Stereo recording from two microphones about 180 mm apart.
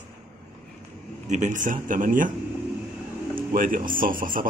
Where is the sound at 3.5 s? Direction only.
50° right (ahead or behind).